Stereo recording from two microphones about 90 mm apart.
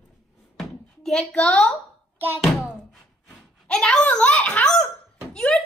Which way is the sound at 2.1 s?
20° right (ahead or behind).